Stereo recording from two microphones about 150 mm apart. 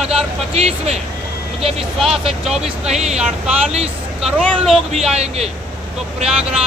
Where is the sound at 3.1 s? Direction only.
5° right (ahead or behind).